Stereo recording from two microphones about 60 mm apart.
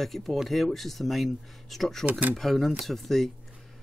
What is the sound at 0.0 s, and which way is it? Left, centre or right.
Speech, centre.